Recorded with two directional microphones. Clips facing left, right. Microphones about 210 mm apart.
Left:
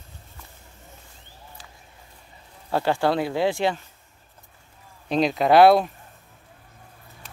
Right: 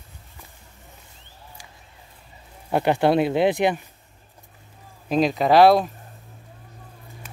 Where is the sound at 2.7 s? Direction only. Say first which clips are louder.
Right 3 dB; 20° right (ahead or behind).